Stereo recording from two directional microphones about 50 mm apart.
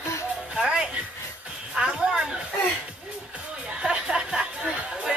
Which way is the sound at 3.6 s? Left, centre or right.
Centre.